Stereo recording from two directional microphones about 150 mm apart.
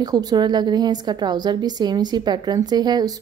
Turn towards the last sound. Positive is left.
turn(degrees=-30)  # may be behind; listen again after turning